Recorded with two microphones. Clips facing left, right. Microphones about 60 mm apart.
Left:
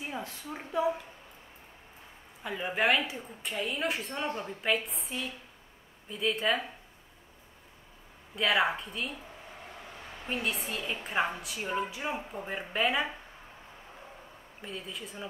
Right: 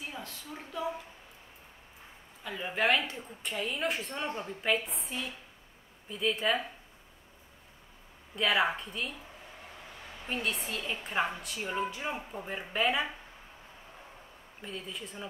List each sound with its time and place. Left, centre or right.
0.0 s a woman's voice: left
2.4 s speech: centre
8.4 s speech: centre
10.2 s speech: centre
14.6 s speech: centre